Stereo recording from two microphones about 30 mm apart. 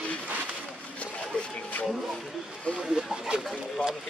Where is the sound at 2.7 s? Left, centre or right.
Left.